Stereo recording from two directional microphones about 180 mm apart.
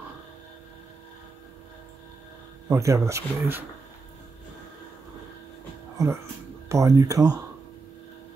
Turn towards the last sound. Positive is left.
turn(degrees=-20)  # may be behind; listen again after turning